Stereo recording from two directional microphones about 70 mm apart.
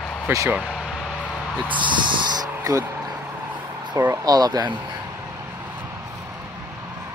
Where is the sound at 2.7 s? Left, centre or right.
Right.